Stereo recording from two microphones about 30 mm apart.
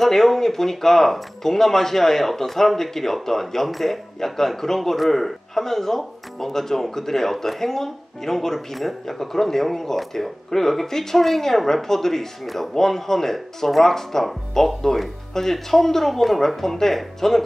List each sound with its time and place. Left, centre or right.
0.0 s speech: centre